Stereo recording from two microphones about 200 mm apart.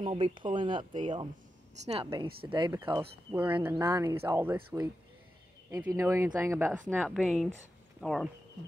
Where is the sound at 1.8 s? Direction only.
35° right (ahead or behind).